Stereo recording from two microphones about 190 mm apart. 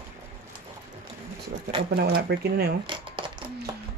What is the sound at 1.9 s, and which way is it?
Speech, 55° right (ahead or behind).